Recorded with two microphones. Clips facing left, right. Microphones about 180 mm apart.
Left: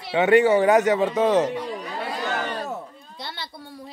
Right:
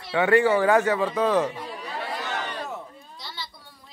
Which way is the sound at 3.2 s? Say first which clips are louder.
Left 4 dB; 60° left (ahead or behind).